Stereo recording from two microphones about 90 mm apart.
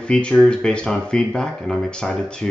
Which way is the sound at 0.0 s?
10° left (ahead or behind).